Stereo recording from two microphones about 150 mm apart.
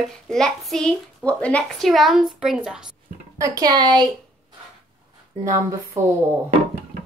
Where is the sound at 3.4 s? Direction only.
25° right (ahead or behind).